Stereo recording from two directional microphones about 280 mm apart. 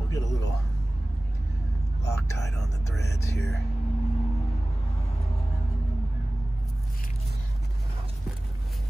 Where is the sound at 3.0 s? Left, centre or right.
Left.